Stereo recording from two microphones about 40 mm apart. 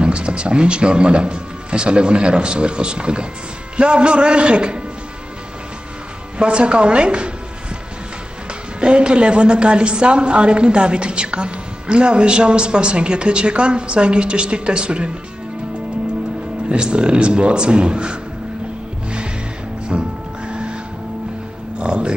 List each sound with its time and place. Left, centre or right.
0.0 s a woman's voice: right
6.3 s a woman's voice: right
8.8 s a woman's voice: right
16.6 s a woman's voice: right
19.9 s music: right
21.7 s music: right